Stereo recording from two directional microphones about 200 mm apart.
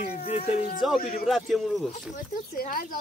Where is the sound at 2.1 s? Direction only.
45° left (ahead or behind).